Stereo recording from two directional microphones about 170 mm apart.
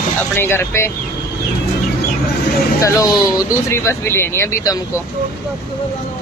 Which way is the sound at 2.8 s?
20° left (ahead or behind).